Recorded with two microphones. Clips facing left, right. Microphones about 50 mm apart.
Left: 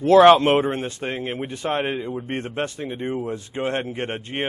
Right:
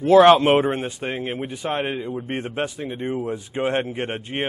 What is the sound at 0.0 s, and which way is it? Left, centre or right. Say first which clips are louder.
A man's voice: even; centre.